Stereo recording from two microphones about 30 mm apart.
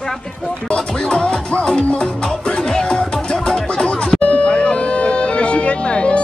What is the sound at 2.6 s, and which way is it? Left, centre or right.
Music, left.